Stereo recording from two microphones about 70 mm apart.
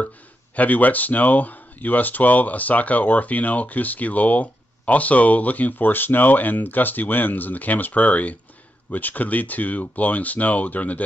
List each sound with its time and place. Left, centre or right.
0.6 s speech: left